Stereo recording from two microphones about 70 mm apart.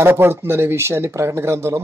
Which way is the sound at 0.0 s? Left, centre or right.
Right.